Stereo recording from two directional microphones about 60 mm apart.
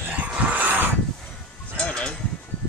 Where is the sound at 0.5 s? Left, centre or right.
Right.